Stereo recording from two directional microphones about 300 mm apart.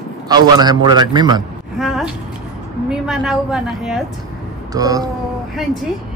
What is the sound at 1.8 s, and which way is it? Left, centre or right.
A woman's voice, centre.